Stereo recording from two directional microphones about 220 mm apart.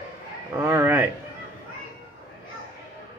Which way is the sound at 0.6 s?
10° right (ahead or behind).